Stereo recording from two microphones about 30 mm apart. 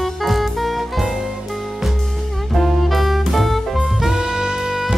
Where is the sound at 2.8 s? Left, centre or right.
Centre.